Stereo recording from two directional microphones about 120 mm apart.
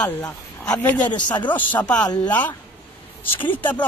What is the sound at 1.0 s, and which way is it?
Speech, 40° left (ahead or behind).